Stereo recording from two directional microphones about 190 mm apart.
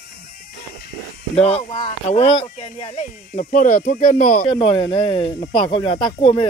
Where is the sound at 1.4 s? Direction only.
35° left (ahead or behind).